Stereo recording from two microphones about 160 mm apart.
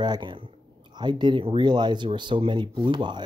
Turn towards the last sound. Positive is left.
turn(degrees=-30)  # may be behind; listen again after turning